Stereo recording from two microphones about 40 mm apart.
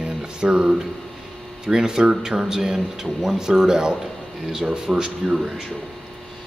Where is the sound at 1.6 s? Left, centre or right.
Centre.